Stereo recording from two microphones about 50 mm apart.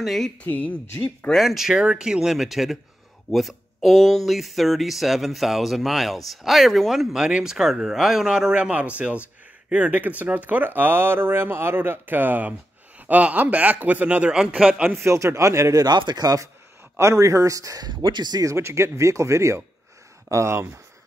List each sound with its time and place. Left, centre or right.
0.0 s speech: centre
0.4 s speech: left
1.3 s speech: centre
1.7 s speech: centre
14.7 s speech: right
15.0 s speech: right
17.0 s speech: right
18.5 s speech: right